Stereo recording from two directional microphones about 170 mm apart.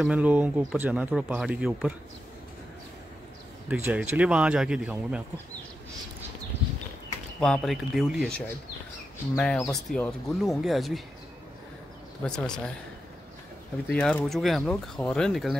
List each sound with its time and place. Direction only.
0.0 s speech: 10° right (ahead or behind)
3.6 s speech: 10° right (ahead or behind)
7.3 s speech: 5° left (ahead or behind)
12.2 s speech: 5° left (ahead or behind)
13.8 s speech: 5° left (ahead or behind)